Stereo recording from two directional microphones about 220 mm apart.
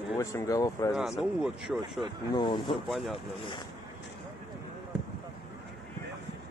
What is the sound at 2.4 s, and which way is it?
Speech, 20° left (ahead or behind).